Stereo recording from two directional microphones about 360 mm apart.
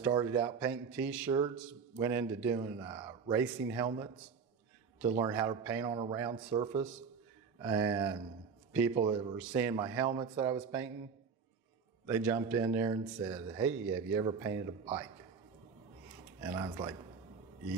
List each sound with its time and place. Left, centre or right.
0.0 s a man's voice: centre
5.1 s a man's voice: centre
12.1 s a man's voice: centre
16.4 s a man's voice: centre